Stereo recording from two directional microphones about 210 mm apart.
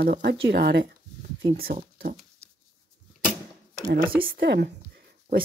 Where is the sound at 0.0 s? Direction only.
45° right (ahead or behind).